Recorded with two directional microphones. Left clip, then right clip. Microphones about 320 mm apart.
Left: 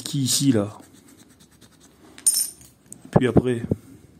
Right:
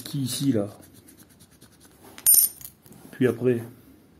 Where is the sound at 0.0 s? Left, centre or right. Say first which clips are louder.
Left 6 dB; centre.